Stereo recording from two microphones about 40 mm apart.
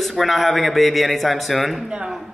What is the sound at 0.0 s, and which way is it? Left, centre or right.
A man's voice, centre.